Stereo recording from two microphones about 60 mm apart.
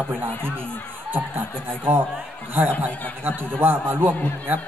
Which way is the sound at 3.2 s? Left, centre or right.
Right.